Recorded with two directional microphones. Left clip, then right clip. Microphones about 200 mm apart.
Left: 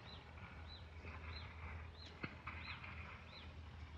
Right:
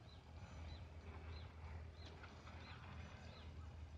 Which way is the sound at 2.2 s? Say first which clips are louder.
Left 13 dB; 30° right (ahead or behind).